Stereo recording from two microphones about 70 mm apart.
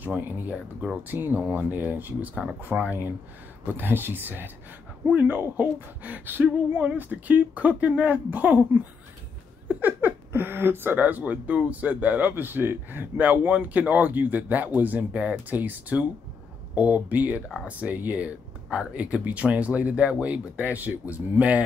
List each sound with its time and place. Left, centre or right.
0.0 s speech: right